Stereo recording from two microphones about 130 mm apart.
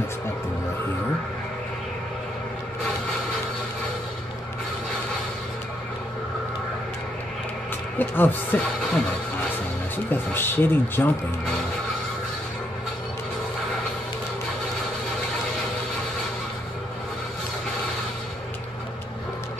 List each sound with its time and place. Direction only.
8.0 s speech: 15° left (ahead or behind)
10.0 s speech: 15° left (ahead or behind)